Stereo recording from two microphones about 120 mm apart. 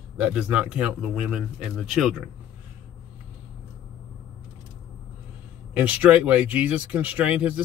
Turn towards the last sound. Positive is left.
turn(degrees=-10)  # may be behind; listen again after turning